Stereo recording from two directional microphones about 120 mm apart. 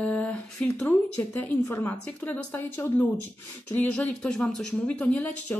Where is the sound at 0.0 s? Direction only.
10° left (ahead or behind).